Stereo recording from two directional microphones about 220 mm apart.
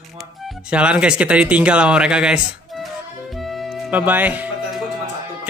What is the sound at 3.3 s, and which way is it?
Music, centre (ahead or behind).